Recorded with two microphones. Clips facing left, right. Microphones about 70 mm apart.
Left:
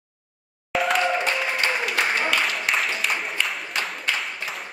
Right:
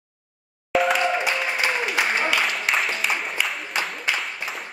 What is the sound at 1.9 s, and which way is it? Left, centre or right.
Music, centre.